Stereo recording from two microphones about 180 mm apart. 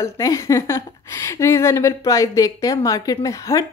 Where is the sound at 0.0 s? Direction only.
15° left (ahead or behind).